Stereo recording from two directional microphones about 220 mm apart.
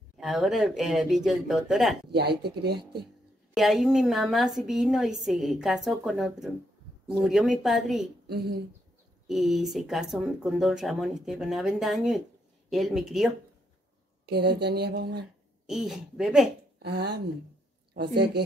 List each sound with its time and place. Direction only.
0.2 s a woman's voice: centre (ahead or behind)
2.0 s speech: 50° right (ahead or behind)
3.5 s a woman's voice: centre (ahead or behind)
8.3 s speech: 45° right (ahead or behind)
9.3 s a woman's voice: centre (ahead or behind)
14.2 s speech: 50° right (ahead or behind)
15.6 s a woman's voice: centre (ahead or behind)
16.8 s speech: 50° right (ahead or behind)